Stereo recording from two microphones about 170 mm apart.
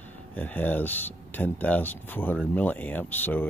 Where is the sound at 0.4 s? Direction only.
10° left (ahead or behind).